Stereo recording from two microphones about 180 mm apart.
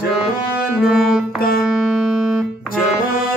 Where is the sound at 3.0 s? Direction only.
50° left (ahead or behind).